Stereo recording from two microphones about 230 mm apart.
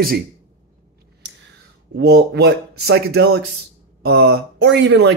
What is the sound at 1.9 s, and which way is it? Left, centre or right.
Speech, right.